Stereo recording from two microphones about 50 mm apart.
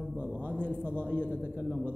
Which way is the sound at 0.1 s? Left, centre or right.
Right.